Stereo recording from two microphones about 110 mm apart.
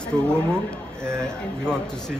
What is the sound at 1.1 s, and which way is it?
Speech, 25° right (ahead or behind).